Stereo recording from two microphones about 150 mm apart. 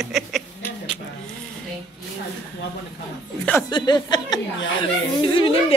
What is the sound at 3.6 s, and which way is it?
Speech, 30° left (ahead or behind).